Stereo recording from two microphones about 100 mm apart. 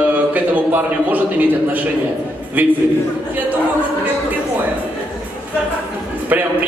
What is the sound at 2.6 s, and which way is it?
Speech, 15° right (ahead or behind).